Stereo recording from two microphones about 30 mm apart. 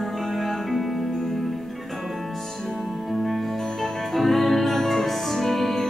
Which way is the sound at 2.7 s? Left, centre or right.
Centre.